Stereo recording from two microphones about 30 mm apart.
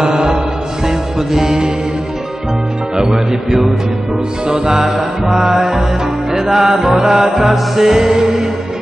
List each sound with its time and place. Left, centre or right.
0.0 s music: right
3.0 s speech: right
4.5 s music: centre